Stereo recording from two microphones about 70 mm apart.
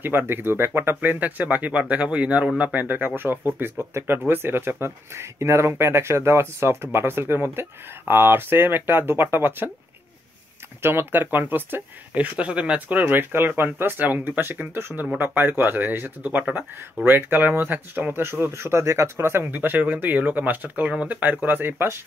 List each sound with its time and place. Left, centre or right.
0.0 s speech: right
10.8 s speech: right